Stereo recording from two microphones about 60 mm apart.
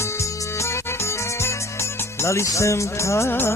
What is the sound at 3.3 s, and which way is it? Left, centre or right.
Music, left.